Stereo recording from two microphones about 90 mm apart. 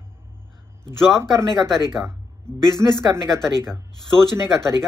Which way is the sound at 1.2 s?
30° right (ahead or behind).